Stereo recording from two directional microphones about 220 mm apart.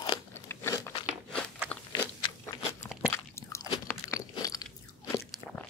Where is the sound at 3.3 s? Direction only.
10° left (ahead or behind).